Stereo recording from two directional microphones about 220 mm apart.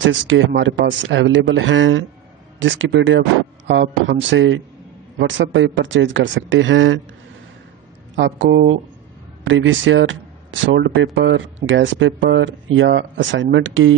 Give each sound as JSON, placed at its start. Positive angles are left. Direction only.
{"t": 0.0, "sound": "speech", "side_deg": -60}
{"t": 8.2, "sound": "speech", "side_deg": -55}